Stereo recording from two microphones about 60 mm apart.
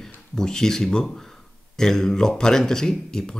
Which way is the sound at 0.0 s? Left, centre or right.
Centre.